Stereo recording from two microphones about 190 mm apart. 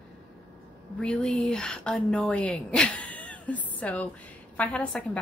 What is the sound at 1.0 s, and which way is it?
A woman's voice, 5° left (ahead or behind).